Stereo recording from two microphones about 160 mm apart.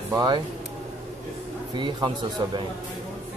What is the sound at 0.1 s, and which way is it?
Speech, 25° right (ahead or behind).